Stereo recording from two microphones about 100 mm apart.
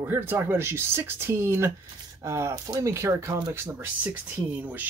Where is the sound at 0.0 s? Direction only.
20° right (ahead or behind).